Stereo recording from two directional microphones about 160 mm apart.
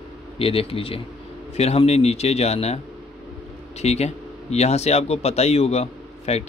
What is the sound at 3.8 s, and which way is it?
Speech, 40° left (ahead or behind).